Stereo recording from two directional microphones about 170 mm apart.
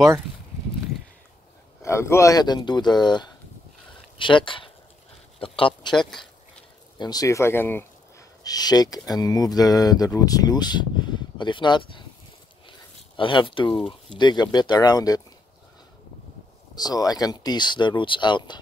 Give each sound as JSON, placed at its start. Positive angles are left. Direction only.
{"t": 1.8, "sound": "speech", "side_deg": 15}
{"t": 5.9, "sound": "speech", "side_deg": 5}
{"t": 7.0, "sound": "speech", "side_deg": 20}
{"t": 16.7, "sound": "speech", "side_deg": 20}